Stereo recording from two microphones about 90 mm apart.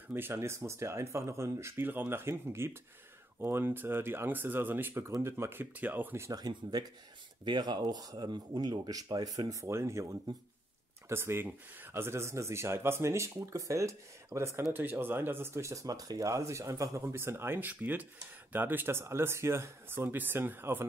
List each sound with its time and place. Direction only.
0.1 s speech: 30° right (ahead or behind)
6.2 s speech: 45° right (ahead or behind)
7.4 s speech: 60° right (ahead or behind); by 20.8 s 25° right (ahead or behind)